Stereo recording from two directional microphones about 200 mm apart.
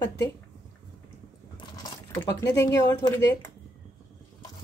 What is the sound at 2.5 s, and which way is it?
Speech, 15° left (ahead or behind).